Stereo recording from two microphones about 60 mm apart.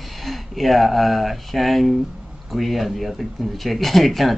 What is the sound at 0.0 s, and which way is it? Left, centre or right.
Speech, centre.